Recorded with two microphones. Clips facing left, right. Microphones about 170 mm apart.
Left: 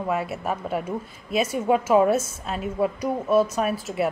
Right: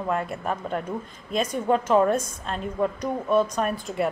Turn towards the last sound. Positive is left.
turn(degrees=5)  # may be behind; listen again after turning